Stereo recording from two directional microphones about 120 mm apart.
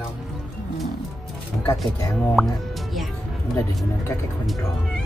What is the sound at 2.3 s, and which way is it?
Music, centre (ahead or behind).